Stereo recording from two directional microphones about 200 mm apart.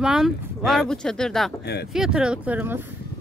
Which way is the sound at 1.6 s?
55° left (ahead or behind).